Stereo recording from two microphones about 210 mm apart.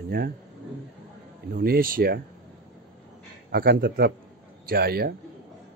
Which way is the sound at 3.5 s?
45° right (ahead or behind).